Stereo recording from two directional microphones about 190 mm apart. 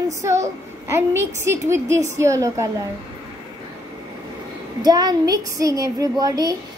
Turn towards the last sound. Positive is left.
turn(degrees=-20)  # may be behind; listen again after turning